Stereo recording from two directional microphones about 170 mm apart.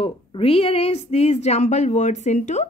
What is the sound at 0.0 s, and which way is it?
Speech, 35° left (ahead or behind).